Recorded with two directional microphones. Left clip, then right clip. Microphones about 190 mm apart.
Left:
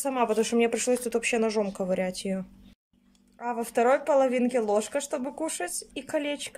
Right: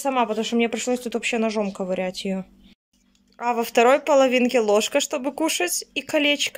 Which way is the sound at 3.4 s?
5° right (ahead or behind).